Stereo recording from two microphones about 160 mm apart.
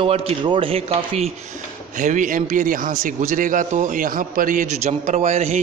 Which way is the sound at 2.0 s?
55° right (ahead or behind).